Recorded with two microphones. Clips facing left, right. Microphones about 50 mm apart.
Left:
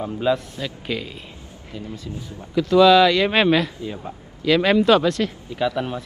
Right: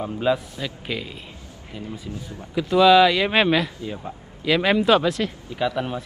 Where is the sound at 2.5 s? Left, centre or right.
Centre.